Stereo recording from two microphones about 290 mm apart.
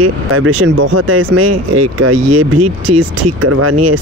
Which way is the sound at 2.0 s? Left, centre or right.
Right.